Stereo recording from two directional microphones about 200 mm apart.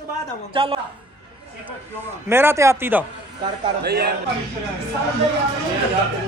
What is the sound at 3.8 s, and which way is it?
Speech, 55° right (ahead or behind).